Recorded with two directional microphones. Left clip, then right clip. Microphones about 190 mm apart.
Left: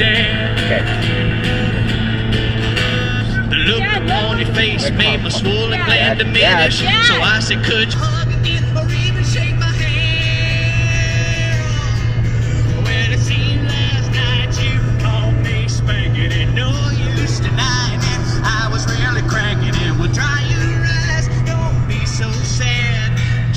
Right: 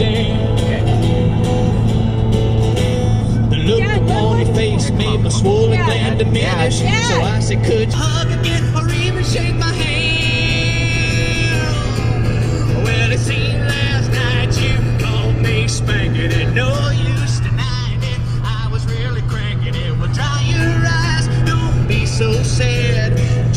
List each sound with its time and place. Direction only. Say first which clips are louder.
0.0 s music: left 5 dB; 15° right (ahead or behind)
3.5 s vehicle: left 2 dB; 15° right (ahead or behind)
5.4 s speech: right 2 dB; 15° right (ahead or behind)